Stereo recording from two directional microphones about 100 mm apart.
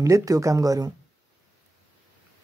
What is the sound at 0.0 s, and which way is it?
Speech, 35° right (ahead or behind).